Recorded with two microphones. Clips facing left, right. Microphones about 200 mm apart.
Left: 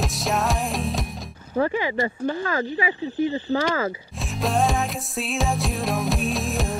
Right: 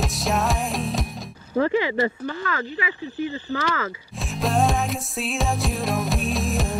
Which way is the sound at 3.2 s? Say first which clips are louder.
Left 5 dB; 20° left (ahead or behind).